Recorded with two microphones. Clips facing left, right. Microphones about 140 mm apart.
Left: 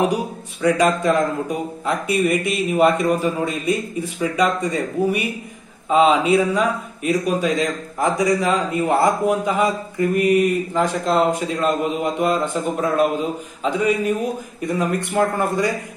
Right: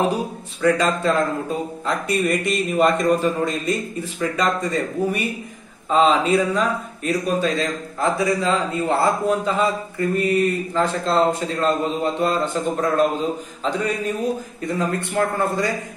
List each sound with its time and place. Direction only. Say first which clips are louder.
0.1 s speech: left 1 dB; 15° left (ahead or behind)